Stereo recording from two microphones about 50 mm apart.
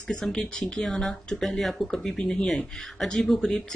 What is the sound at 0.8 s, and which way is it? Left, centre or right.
Speech, centre.